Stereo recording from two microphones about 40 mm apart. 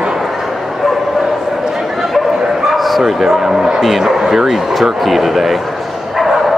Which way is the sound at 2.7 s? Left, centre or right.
Centre.